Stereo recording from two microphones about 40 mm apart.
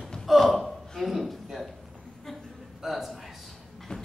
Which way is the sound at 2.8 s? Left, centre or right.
Centre.